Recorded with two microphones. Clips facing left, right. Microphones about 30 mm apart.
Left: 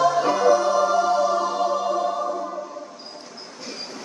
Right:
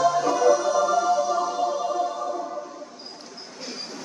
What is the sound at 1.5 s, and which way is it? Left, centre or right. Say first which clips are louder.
Music: left 2 dB; left.